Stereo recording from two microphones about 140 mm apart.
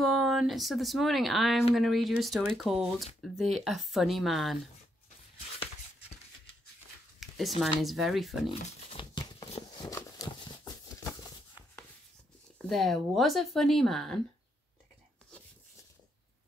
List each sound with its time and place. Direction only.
0.0 s speech: centre (ahead or behind)
7.2 s a sound: centre (ahead or behind)
7.8 s speech: centre (ahead or behind)
8.5 s crumpling: 35° left (ahead or behind)
9.5 s a sound: 35° left (ahead or behind)
12.6 s speech: centre (ahead or behind)